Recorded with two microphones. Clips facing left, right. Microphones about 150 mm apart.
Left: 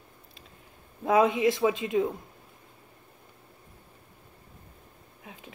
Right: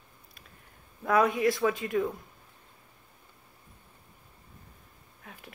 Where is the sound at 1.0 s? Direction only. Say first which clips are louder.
Left 2 dB; 20° left (ahead or behind).